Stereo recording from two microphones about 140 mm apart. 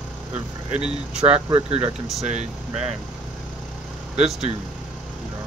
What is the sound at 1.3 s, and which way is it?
Speech, 45° right (ahead or behind).